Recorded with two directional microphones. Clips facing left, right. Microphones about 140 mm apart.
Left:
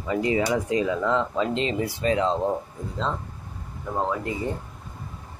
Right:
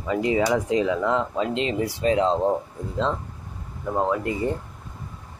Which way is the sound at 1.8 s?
25° right (ahead or behind).